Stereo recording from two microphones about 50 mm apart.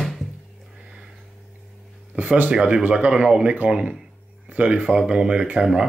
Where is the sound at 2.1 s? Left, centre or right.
Right.